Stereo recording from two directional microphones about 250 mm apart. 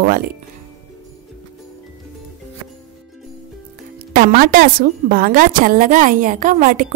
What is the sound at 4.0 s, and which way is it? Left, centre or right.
Music, right.